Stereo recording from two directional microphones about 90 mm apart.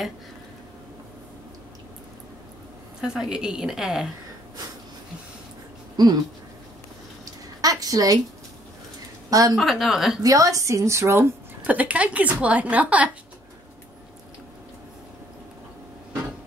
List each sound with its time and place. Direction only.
3.0 s a woman's voice: 5° right (ahead or behind)
5.9 s a sound: 45° right (ahead or behind)
7.6 s a sound: 45° right (ahead or behind)
9.3 s a woman's voice: 40° right (ahead or behind)
9.6 s speech: centre (ahead or behind)
10.2 s a woman's voice: 40° right (ahead or behind)
11.6 s a woman's voice: 15° right (ahead or behind)